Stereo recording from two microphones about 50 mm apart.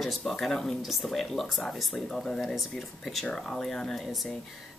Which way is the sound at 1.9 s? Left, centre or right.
Centre.